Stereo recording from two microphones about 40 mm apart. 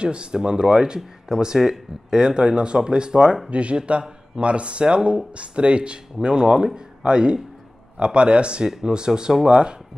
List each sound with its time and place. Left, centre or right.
0.0 s speech: right